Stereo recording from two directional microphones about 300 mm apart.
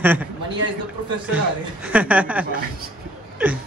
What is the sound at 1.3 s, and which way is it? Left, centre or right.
Speech, centre.